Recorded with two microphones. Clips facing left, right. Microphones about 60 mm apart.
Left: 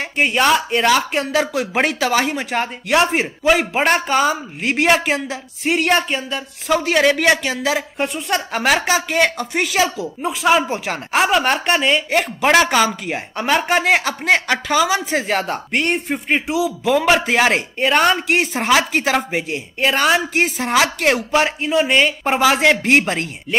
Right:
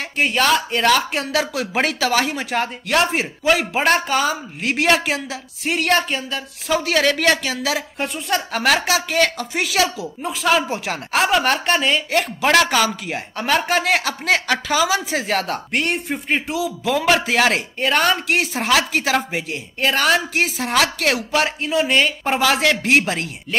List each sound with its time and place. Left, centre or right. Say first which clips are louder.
0.2 s speech: left 2 dB; centre
21.0 s speech: left 3 dB; centre
21.4 s speech: left 2 dB; centre
22.8 s speech: left 2 dB; centre